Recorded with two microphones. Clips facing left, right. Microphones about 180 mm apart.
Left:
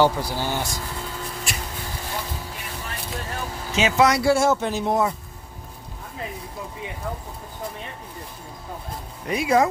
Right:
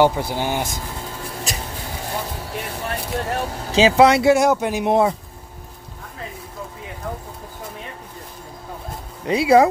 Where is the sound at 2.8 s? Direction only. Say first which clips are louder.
Right 8 dB; 65° right (ahead or behind).